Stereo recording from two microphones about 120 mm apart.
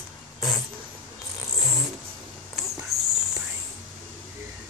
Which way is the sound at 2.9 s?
Centre (ahead or behind).